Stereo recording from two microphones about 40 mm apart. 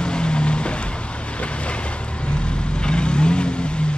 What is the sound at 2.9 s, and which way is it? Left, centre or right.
Vehicle, left.